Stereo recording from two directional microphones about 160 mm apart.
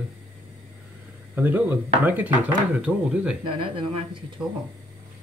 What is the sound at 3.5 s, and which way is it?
Speech, 35° right (ahead or behind).